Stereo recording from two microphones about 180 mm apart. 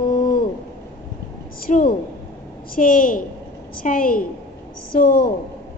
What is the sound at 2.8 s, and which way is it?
A woman's voice, 50° left (ahead or behind).